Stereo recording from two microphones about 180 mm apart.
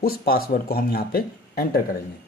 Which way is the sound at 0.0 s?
55° left (ahead or behind).